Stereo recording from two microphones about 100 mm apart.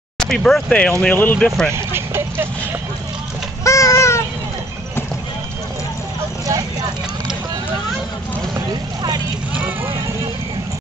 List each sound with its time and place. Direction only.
0.2 s speech: 5° left (ahead or behind)
1.7 s vehicle: 25° right (ahead or behind)
3.6 s a sound: 30° left (ahead or behind)
9.6 s vehicle: 20° right (ahead or behind)